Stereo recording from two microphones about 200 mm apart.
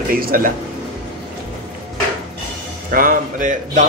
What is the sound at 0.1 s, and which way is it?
Speech, 45° right (ahead or behind).